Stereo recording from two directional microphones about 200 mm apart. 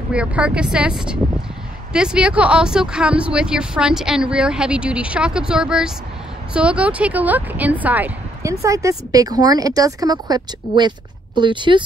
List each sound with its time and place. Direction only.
0.1 s speech: 5° right (ahead or behind); by 11.8 s 25° right (ahead or behind)